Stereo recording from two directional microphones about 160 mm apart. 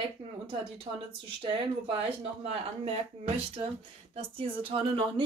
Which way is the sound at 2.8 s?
40° right (ahead or behind).